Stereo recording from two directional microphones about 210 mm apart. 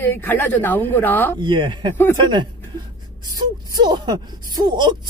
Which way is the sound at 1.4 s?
20° right (ahead or behind).